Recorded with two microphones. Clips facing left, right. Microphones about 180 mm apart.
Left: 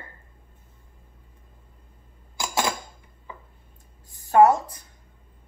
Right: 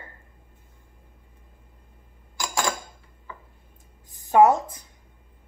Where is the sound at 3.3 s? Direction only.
15° left (ahead or behind).